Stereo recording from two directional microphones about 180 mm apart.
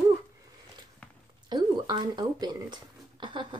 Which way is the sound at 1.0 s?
5° left (ahead or behind).